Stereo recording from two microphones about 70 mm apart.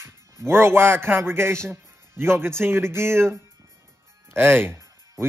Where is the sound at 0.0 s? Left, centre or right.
Right.